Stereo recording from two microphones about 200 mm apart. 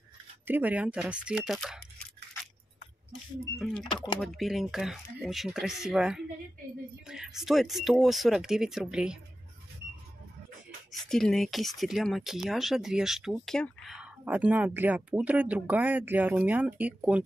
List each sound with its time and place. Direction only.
0.5 s speech: 10° right (ahead or behind)
3.5 s speech: centre (ahead or behind)
3.9 s speech: 25° left (ahead or behind)
4.2 s speech: centre (ahead or behind)
10.9 s speech: centre (ahead or behind)